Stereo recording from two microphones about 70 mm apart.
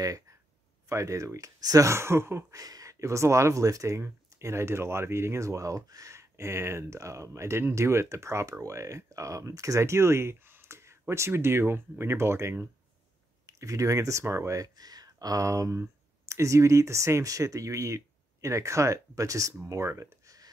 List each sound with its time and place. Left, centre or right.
0.8 s speech: right
2.5 s speech: right